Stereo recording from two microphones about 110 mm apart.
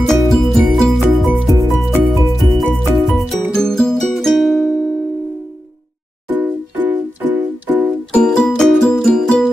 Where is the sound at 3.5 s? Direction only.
5° left (ahead or behind).